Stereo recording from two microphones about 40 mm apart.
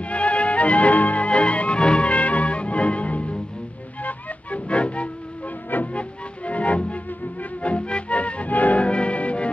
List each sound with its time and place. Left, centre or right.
0.0 s music: left